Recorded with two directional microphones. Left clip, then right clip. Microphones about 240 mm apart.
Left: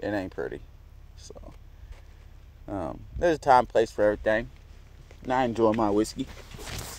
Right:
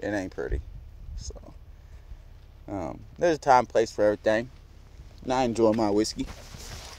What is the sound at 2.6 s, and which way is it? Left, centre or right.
Speech, centre.